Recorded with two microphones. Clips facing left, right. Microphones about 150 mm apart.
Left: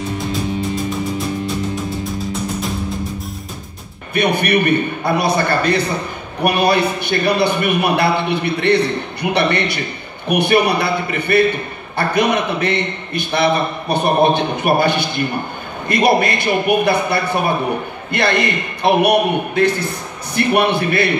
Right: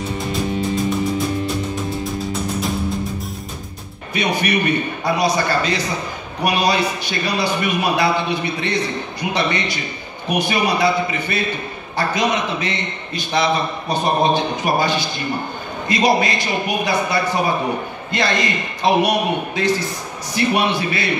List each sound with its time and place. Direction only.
4.1 s a man's voice: 55° left (ahead or behind)